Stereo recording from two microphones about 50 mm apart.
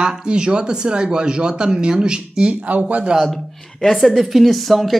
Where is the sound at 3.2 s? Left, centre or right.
Centre.